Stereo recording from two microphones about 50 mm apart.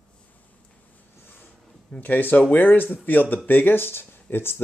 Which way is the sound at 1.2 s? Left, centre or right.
Left.